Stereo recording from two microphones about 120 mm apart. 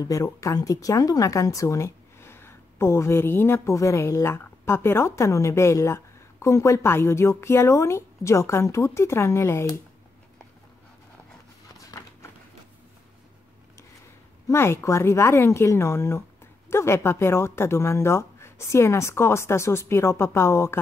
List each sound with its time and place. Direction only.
0.0 s speech: 30° left (ahead or behind)
11.7 s a sound: 30° left (ahead or behind)
14.5 s speech: 20° left (ahead or behind)